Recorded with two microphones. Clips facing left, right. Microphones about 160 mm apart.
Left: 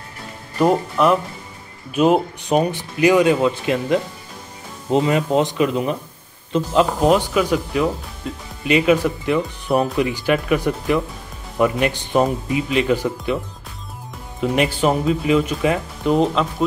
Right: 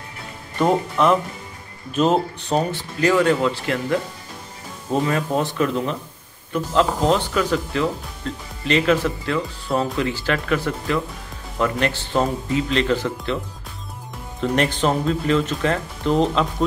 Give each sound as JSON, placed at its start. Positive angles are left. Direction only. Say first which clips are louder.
{"t": 0.6, "sound": "speech", "louder": "left 2 dB", "side_deg": 5}
{"t": 14.4, "sound": "speech", "louder": "left 2 dB", "side_deg": 5}